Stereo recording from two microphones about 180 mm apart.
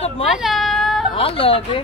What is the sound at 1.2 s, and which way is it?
Speech, 30° left (ahead or behind).